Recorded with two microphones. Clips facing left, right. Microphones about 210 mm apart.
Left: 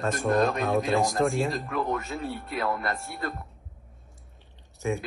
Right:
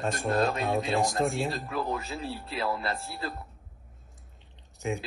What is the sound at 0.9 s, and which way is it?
Speech, centre (ahead or behind).